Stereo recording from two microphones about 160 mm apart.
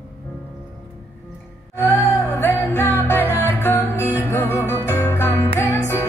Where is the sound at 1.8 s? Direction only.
10° left (ahead or behind).